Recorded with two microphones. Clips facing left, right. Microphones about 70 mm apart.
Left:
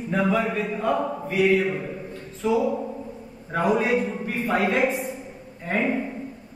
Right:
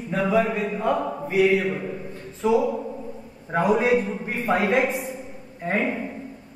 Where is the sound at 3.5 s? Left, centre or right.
Right.